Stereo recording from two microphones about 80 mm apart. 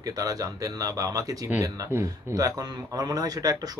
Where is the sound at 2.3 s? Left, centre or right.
Right.